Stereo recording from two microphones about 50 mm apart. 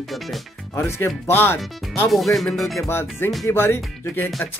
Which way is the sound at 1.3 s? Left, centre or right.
Left.